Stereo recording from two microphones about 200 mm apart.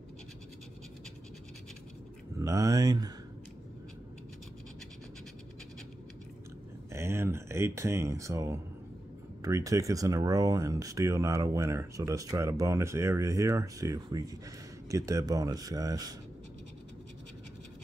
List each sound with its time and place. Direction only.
2.4 s speech: 15° right (ahead or behind)
6.9 s speech: 15° right (ahead or behind)